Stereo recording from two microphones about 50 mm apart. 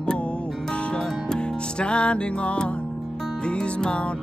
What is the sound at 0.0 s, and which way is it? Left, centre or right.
Music, centre.